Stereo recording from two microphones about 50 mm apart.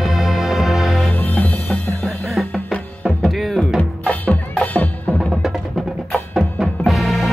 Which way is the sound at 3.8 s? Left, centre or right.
Left.